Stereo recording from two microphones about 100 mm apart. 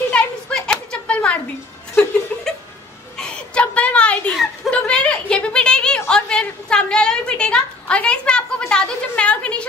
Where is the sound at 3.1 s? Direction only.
10° left (ahead or behind).